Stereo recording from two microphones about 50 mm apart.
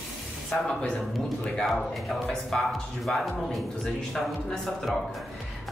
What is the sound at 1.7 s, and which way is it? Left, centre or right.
Speech, centre.